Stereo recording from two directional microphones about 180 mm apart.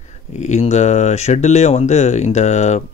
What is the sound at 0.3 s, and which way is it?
Speech, 40° left (ahead or behind).